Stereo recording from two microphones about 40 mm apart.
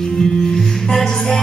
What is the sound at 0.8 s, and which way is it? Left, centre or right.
Music, centre.